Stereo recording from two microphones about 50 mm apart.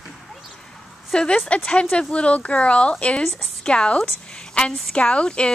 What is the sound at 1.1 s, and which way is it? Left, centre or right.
Speech, centre.